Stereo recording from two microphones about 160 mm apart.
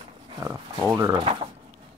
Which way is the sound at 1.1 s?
30° right (ahead or behind).